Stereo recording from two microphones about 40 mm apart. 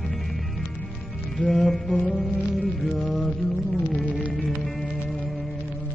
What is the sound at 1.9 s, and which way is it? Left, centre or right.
Music, left.